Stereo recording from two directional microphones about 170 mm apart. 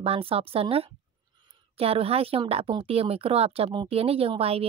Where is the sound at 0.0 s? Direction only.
35° right (ahead or behind).